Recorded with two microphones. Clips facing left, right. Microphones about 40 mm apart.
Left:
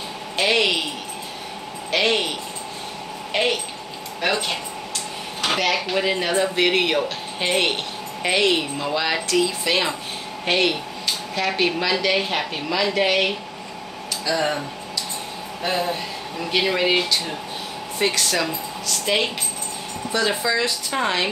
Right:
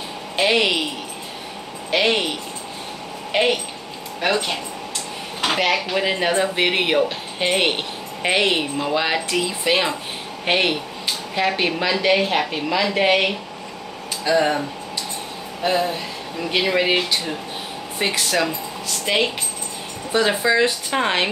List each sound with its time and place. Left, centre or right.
0.4 s speech: centre
1.9 s speech: centre
3.3 s speech: centre
4.2 s speech: centre
15.6 s speech: centre
20.1 s speech: right